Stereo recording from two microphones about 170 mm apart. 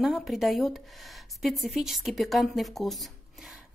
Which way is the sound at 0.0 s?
Centre (ahead or behind).